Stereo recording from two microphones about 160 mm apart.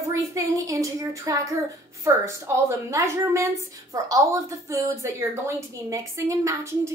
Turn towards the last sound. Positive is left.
turn(degrees=-20)  # may be behind; listen again after turning